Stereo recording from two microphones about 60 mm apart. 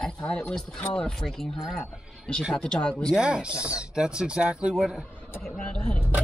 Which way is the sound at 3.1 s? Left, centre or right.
Centre.